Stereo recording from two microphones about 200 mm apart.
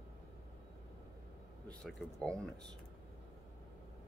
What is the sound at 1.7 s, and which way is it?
Speech, centre (ahead or behind).